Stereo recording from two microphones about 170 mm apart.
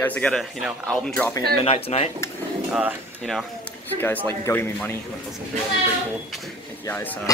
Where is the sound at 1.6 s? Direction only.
35° left (ahead or behind).